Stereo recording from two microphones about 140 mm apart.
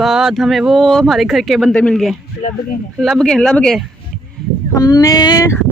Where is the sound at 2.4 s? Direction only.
65° left (ahead or behind).